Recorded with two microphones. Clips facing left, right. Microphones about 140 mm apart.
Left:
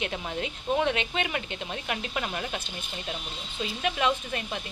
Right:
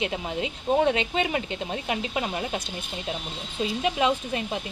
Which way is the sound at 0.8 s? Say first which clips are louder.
Right 5 dB; 35° right (ahead or behind).